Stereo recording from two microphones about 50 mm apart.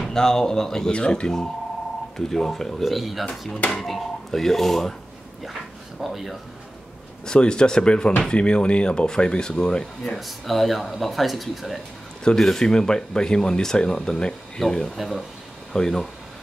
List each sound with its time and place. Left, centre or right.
0.0 s speech: centre
2.8 s speech: centre
5.4 s dog: centre
7.2 s speech: centre
10.1 s speech: centre
15.0 s speech: centre
15.7 s speech: centre